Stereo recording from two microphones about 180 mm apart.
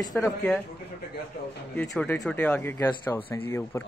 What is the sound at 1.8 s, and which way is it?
Speech, 5° left (ahead or behind).